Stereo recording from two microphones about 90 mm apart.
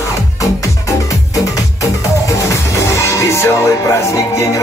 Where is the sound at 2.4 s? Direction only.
35° left (ahead or behind).